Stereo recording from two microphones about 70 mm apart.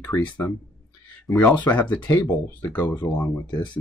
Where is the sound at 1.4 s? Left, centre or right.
Centre.